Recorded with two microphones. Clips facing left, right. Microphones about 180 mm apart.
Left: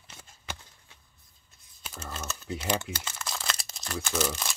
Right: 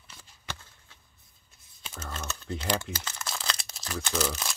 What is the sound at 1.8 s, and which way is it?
Typing, 5° left (ahead or behind).